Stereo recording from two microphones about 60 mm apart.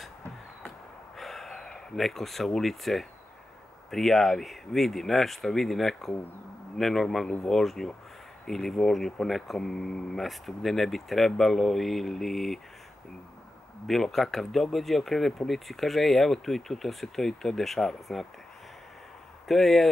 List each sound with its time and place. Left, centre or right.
1.1 s gasp: centre
3.9 s speech: centre
13.8 s speech: centre
19.4 s speech: centre